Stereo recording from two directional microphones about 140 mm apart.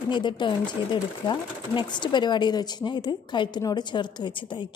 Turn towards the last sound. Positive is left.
turn(degrees=35)  # may be behind; listen again after turning